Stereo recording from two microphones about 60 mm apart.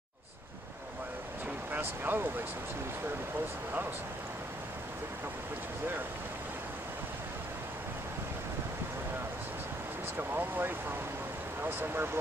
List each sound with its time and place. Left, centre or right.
1.7 s speech: right
10.1 s speech: right